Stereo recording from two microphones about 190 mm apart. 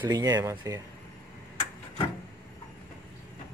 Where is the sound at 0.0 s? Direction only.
20° right (ahead or behind).